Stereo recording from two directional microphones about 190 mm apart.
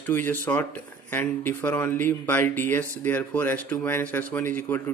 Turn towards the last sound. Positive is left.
turn(degrees=10)  # may be behind; listen again after turning